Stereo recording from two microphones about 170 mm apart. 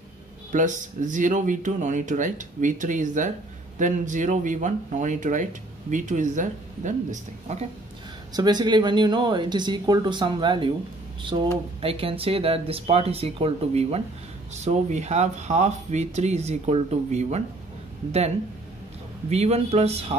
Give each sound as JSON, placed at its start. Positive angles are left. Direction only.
{"t": 0.5, "sound": "speech", "side_deg": -45}
{"t": 8.3, "sound": "speech", "side_deg": -25}
{"t": 11.8, "sound": "speech", "side_deg": -35}
{"t": 19.2, "sound": "speech", "side_deg": -40}